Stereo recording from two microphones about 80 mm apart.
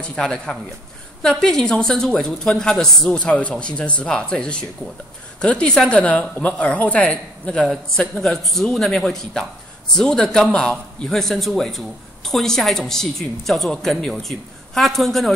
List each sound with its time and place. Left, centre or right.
0.0 s a woman's voice: centre